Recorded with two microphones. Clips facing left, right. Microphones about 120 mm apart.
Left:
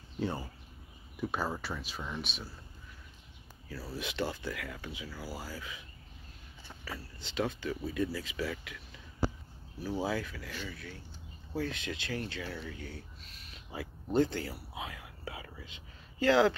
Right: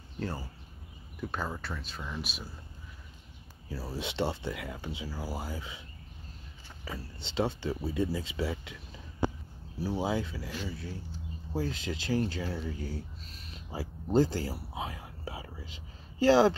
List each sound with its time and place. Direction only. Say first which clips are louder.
0.2 s speech: left 2 dB; centre (ahead or behind)
3.9 s speech: right 3 dB; 25° right (ahead or behind)
14.1 s whispering: right 3 dB; 35° right (ahead or behind)